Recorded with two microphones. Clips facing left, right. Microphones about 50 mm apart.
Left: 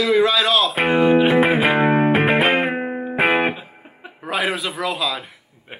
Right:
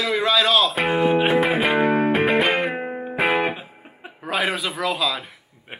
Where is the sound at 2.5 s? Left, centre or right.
Centre.